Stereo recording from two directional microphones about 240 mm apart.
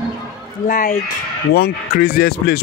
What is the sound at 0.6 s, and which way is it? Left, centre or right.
Speech, left.